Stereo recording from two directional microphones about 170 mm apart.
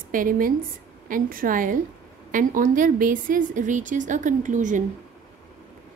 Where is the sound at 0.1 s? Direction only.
55° right (ahead or behind).